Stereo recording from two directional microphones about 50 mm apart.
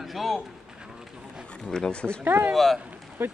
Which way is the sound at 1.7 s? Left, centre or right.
Centre.